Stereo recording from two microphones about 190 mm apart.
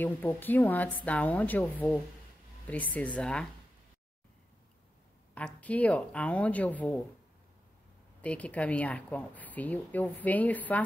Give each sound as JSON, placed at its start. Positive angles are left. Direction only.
{"t": 0.0, "sound": "speech", "side_deg": 10}
{"t": 5.3, "sound": "speech", "side_deg": 5}
{"t": 8.2, "sound": "speech", "side_deg": 5}